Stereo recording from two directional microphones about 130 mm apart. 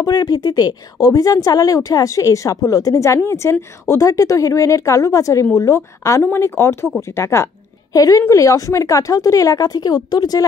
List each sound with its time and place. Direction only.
0.0 s speech: 30° left (ahead or behind)